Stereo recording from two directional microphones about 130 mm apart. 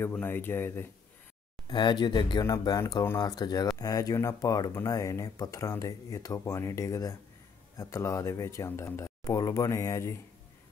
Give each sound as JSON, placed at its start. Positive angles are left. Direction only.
{"t": 0.0, "sound": "speech", "side_deg": 15}
{"t": 1.7, "sound": "speech", "side_deg": 35}
{"t": 2.8, "sound": "speech", "side_deg": 20}
{"t": 3.2, "sound": "speech", "side_deg": 30}